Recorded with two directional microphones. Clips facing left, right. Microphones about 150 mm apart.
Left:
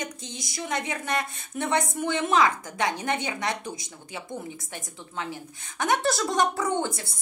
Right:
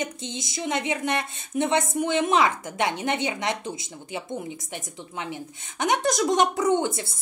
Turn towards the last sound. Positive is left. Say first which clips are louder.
# right 5 dB
turn(degrees=-20)  # may be behind; listen again after turning